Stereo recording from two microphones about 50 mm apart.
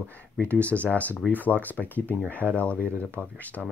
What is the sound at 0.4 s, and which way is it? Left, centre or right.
Speech, left.